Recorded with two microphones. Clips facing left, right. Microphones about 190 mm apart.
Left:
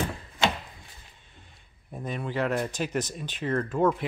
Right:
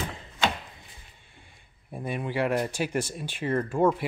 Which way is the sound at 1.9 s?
10° right (ahead or behind).